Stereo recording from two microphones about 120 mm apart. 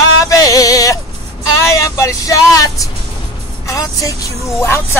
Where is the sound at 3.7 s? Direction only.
30° left (ahead or behind).